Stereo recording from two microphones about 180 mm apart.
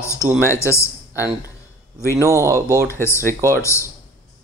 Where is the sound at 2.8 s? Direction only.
15° left (ahead or behind).